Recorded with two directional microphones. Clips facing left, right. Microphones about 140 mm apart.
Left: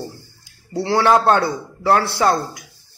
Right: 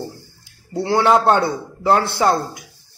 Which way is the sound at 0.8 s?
20° right (ahead or behind).